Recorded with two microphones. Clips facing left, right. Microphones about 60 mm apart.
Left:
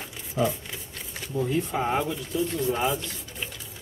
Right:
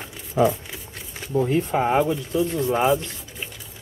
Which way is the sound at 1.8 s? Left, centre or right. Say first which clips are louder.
Right 6 dB; right.